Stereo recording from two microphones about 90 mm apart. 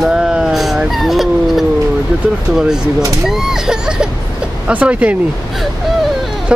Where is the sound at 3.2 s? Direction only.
5° right (ahead or behind).